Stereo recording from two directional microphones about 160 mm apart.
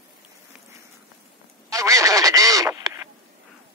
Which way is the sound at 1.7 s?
20° right (ahead or behind).